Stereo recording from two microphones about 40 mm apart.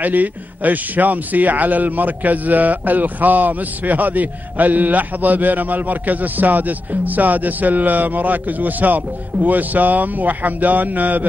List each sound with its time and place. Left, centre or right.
0.0 s a man's voice: right